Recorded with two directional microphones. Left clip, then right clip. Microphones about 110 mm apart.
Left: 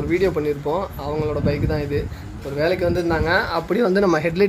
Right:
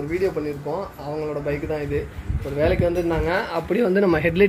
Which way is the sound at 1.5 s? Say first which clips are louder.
Left 2 dB; 5° left (ahead or behind).